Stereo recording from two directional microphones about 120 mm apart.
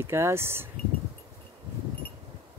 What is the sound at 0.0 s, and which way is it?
Speech, 20° right (ahead or behind).